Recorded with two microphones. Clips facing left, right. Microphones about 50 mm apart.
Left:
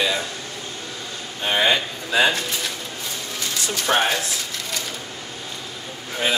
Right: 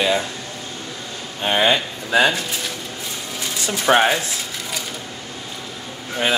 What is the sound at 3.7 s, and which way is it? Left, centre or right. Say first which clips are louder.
Speech: right 5 dB; right.